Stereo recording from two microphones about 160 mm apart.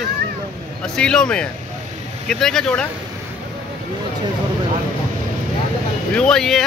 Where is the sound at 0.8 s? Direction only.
5° left (ahead or behind).